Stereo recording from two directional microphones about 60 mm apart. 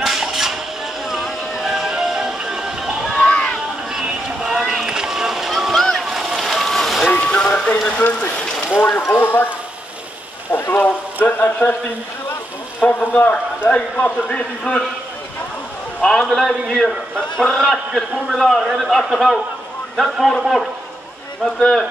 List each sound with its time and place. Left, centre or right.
0.0 s music: centre
3.2 s a sound: centre
4.0 s boat: centre
6.0 s vehicle: centre
7.1 s music: centre
8.0 s a man's voice: left
8.4 s a sound: centre
9.1 s speech: left
10.5 s speech: left
12.8 s a man's voice: left
16.0 s a man's voice: centre